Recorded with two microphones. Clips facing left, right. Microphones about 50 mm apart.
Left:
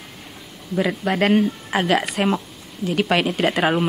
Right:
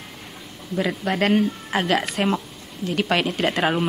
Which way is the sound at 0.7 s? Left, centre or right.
Centre.